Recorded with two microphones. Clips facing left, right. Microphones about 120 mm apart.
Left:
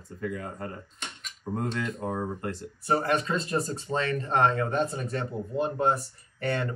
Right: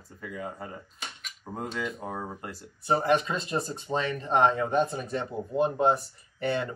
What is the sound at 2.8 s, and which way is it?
Speech, 25° right (ahead or behind).